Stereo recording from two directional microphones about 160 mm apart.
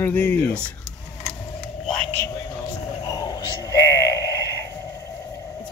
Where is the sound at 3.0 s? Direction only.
20° left (ahead or behind).